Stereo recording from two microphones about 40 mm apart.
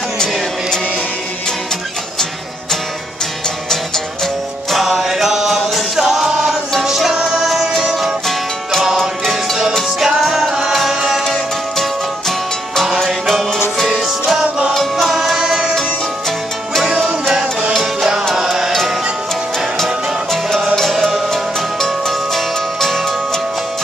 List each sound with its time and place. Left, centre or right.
3.9 s music: centre
4.7 s mantra: centre
5.8 s music: centre
9.2 s music: centre
10.0 s music: centre
10.7 s music: centre
11.7 s music: centre
14.0 s music: centre
14.7 s music: centre
15.1 s music: centre
17.4 s music: right
18.3 s music: centre
19.8 s music: centre